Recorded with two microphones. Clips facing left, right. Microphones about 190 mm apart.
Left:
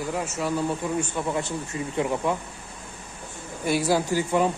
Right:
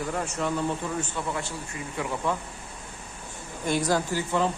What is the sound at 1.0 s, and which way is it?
A man's voice, 15° left (ahead or behind).